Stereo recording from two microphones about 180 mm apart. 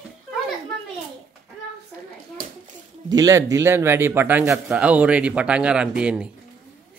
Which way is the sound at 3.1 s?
20° right (ahead or behind).